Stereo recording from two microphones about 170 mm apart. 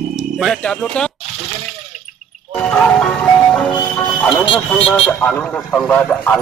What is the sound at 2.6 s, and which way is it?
Speech, 10° left (ahead or behind).